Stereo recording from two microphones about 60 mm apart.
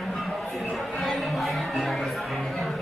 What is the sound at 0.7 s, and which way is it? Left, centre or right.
Music, centre.